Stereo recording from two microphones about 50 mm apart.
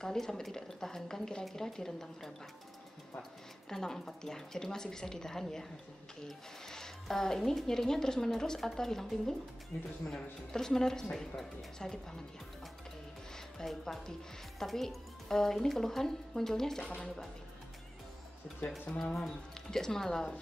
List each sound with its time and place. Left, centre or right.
0.0 s speech: centre
9.7 s speech: left
10.0 s speech: centre
13.6 s a woman's voice: centre
19.1 s speech: centre